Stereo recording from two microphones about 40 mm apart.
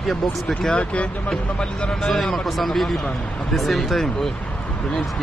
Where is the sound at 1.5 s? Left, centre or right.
Left.